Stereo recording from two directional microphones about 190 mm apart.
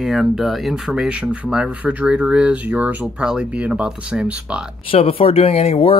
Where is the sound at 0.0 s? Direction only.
Centre (ahead or behind).